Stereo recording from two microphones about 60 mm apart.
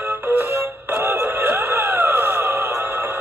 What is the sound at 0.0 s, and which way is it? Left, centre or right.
Music, right.